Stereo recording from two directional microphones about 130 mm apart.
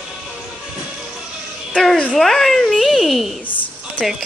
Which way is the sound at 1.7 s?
5° left (ahead or behind).